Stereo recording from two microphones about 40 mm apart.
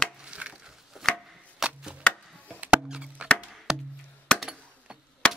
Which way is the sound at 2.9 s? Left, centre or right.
Right.